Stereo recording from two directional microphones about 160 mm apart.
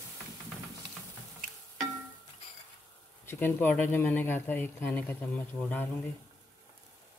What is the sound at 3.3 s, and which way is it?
Speech, 15° left (ahead or behind).